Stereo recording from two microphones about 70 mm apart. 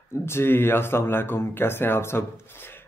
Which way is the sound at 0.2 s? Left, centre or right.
Left.